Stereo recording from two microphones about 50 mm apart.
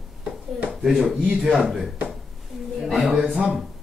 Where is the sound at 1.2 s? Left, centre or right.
Centre.